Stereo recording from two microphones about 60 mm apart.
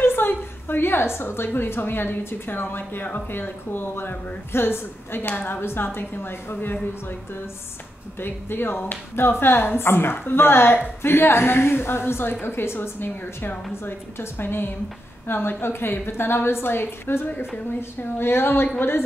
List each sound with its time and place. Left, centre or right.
0.0 s a woman's voice: left
8.2 s a woman's voice: left